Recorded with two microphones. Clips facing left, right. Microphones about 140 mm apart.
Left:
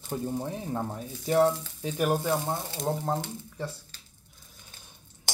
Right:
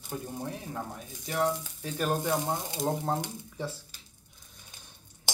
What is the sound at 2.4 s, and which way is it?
Speech, 15° right (ahead or behind).